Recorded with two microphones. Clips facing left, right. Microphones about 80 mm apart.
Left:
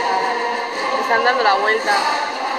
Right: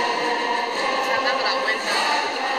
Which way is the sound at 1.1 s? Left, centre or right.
Left.